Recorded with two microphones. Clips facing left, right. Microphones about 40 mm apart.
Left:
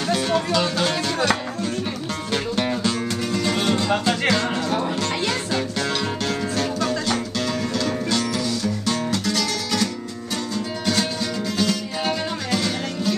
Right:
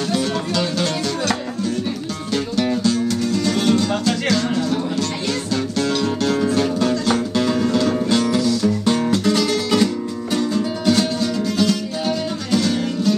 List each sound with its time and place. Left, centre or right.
0.1 s music: centre
2.3 s music: left
5.8 s music: centre
6.4 s music: centre
10.3 s music: centre
12.1 s music: centre